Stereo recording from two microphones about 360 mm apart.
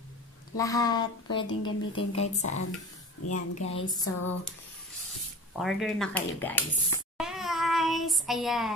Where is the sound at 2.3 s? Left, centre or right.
Centre.